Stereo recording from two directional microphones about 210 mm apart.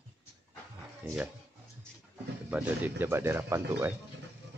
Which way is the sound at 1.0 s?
10° right (ahead or behind).